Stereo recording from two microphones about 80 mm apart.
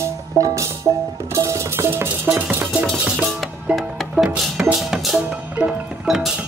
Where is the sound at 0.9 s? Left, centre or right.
Right.